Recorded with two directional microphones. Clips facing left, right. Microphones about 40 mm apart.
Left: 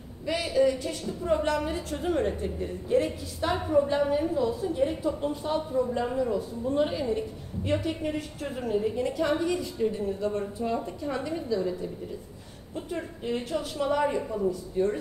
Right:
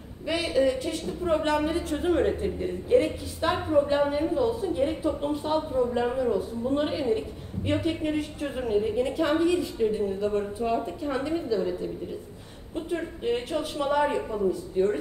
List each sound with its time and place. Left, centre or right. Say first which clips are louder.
0.3 s a woman's voice: even; right
12.9 s a woman's voice: right 4 dB; right